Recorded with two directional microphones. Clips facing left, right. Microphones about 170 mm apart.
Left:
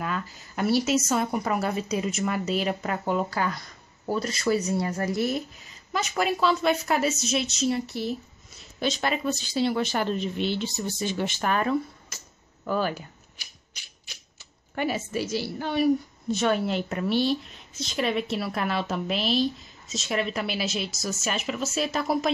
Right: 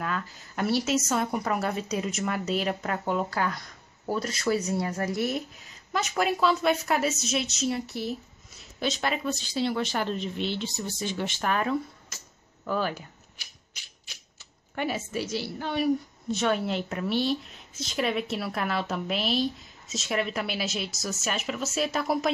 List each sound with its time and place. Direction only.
0.0 s a woman's voice: 5° left (ahead or behind)
14.8 s a woman's voice: 5° left (ahead or behind)